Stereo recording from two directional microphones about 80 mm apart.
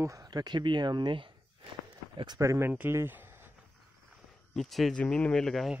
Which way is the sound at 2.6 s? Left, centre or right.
Right.